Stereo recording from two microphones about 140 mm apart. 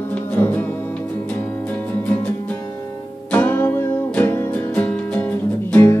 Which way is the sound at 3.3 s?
15° left (ahead or behind).